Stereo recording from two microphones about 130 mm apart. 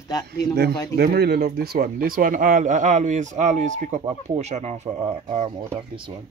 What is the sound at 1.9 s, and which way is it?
Speech, 90° right.